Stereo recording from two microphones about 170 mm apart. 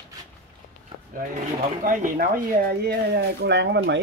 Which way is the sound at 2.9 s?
80° right.